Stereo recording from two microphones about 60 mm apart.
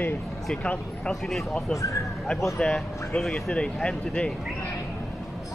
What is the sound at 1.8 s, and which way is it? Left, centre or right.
Speech, left.